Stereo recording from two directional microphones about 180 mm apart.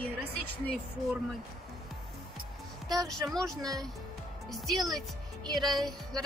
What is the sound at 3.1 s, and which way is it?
Speech, centre (ahead or behind).